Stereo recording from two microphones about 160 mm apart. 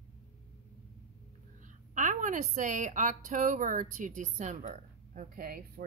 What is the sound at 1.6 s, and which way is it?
A woman's voice, 50° right (ahead or behind).